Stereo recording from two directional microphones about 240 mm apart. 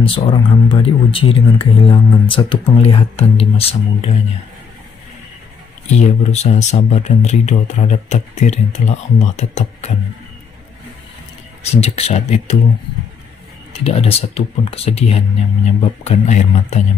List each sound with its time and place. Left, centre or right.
0.0 s speech: left
5.9 s speech: left
11.7 s speech: left
13.7 s speech: left